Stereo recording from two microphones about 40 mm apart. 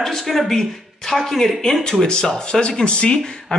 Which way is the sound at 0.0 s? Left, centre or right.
Centre.